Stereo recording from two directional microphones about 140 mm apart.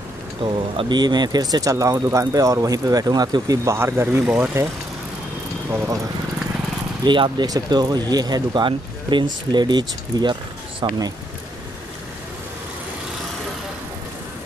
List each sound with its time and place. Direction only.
0.4 s speech: 35° right (ahead or behind); by 4.6 s 15° right (ahead or behind)
7.1 s speech: 35° right (ahead or behind)